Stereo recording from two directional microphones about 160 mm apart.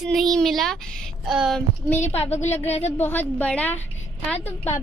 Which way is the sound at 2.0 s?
40° left (ahead or behind).